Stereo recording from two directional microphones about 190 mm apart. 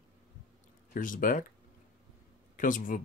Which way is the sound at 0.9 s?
45° left (ahead or behind).